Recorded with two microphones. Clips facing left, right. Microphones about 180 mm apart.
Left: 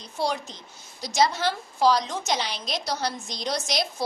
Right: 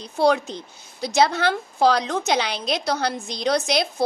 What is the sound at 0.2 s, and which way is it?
A woman's voice, 65° right (ahead or behind).